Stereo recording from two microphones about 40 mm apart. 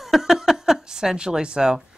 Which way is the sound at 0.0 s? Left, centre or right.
Centre.